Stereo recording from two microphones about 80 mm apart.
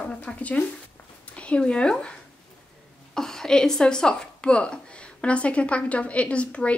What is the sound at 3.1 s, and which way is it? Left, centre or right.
A woman's voice, centre.